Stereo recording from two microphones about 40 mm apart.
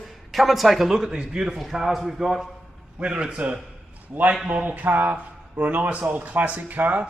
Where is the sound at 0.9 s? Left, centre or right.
Centre.